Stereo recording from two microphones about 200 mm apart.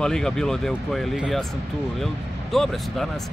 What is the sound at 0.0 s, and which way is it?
Speech, 5° left (ahead or behind).